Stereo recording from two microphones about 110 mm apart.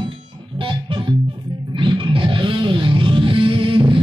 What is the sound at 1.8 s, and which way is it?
Music, 50° right (ahead or behind).